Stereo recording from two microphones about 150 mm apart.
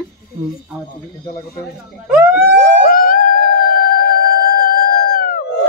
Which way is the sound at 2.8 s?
75° left (ahead or behind).